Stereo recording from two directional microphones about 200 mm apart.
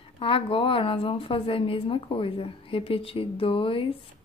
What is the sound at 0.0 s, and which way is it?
A woman's voice, 25° left (ahead or behind).